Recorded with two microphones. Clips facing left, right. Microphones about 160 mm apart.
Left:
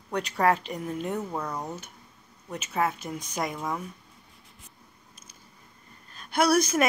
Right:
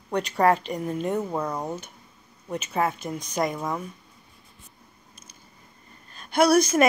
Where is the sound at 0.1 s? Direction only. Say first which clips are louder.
Right 3 dB; 5° left (ahead or behind).